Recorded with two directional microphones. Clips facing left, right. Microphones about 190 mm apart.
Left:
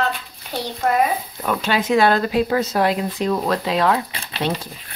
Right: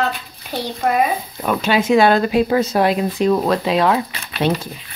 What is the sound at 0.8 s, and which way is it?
Speech, 10° right (ahead or behind).